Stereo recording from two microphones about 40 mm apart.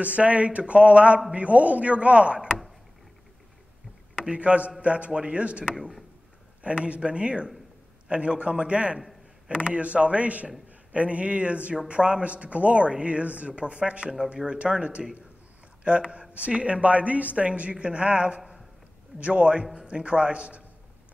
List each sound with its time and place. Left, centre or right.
0.0 s speech: right
4.1 s speech: right
5.8 s speech: centre
6.6 s a man's voice: right